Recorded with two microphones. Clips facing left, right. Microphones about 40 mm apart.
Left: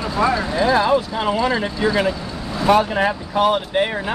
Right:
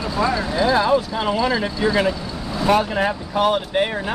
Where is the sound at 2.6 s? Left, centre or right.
Centre.